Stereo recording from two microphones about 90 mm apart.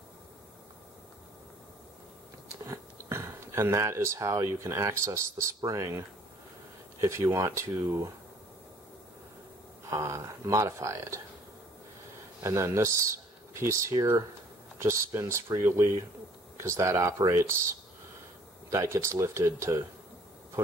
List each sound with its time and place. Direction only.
2.6 s speech: 30° right (ahead or behind)
9.8 s speech: 35° right (ahead or behind)
12.4 s speech: 35° right (ahead or behind)